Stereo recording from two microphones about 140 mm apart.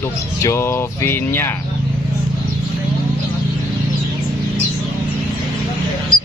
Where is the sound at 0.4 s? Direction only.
20° left (ahead or behind).